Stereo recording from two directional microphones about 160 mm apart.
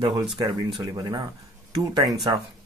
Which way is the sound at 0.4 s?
25° right (ahead or behind).